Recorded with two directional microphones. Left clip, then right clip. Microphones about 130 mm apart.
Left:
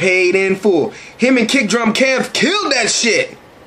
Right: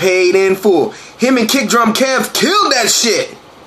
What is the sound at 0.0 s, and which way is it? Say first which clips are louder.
A man's voice: right 2 dB; 40° left (ahead or behind).